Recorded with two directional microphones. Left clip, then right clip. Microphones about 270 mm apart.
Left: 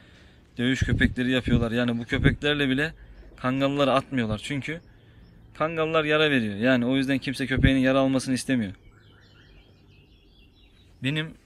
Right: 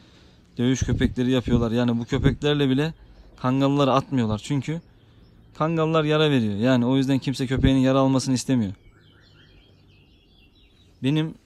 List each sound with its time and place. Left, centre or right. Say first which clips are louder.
0.6 s a man's voice: even; centre
11.0 s a man's voice: right 4 dB; centre